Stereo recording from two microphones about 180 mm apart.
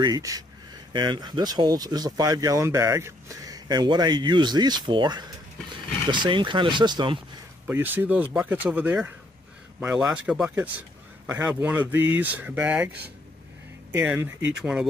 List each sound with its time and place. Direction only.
0.0 s speech: 20° right (ahead or behind)
7.6 s speech: 10° right (ahead or behind)
13.9 s speech: 10° right (ahead or behind)